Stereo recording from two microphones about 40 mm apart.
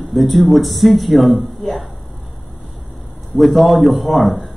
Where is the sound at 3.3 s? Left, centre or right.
Centre.